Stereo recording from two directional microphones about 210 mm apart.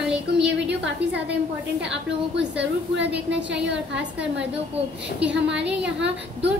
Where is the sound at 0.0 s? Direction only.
5° right (ahead or behind).